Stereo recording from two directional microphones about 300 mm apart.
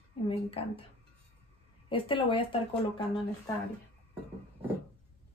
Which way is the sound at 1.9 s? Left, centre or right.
Centre.